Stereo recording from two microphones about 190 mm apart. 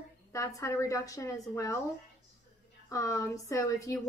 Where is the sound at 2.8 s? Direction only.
15° left (ahead or behind).